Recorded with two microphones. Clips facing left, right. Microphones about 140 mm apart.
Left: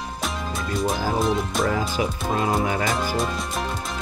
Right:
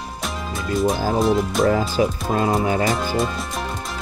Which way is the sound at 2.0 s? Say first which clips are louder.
Right 6 dB; 35° right (ahead or behind).